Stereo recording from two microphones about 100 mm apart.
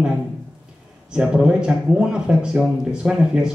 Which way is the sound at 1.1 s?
10° right (ahead or behind).